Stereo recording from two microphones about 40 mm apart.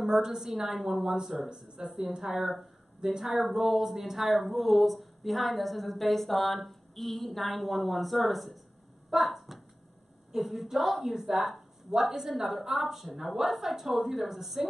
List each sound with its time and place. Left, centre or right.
0.0 s a woman's voice: centre